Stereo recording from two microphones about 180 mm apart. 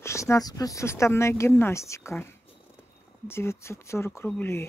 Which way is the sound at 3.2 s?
15° left (ahead or behind).